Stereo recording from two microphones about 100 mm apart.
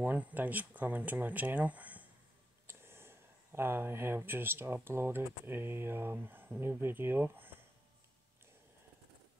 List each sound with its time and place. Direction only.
0.0 s speech: 15° right (ahead or behind)